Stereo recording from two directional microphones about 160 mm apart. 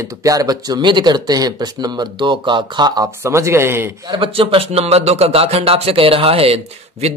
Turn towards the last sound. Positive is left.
turn(degrees=-40)  # may be behind; listen again after turning